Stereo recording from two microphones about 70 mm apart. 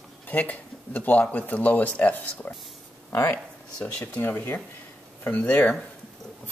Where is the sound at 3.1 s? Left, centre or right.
Left.